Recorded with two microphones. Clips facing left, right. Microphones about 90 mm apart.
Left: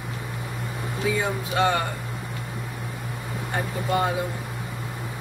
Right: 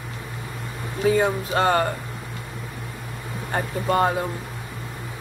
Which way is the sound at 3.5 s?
45° right (ahead or behind).